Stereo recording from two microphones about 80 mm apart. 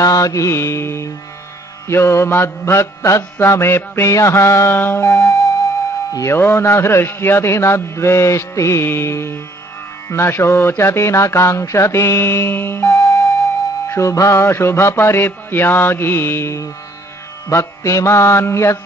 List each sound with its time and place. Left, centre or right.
0.0 s a man's voice: left